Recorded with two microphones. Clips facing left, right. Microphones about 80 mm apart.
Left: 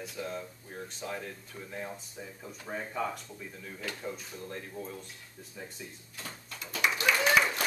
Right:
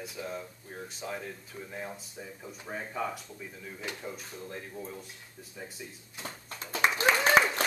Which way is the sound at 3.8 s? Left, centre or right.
Right.